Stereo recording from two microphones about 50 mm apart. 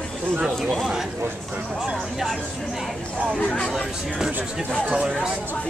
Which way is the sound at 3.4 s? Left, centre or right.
Left.